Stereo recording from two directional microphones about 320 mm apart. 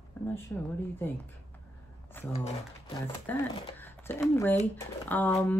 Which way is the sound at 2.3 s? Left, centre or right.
Centre.